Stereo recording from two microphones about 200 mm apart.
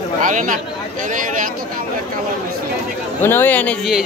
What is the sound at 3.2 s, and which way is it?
Speech, 10° left (ahead or behind).